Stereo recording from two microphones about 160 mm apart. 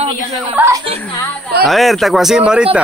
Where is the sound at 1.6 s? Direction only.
Centre (ahead or behind).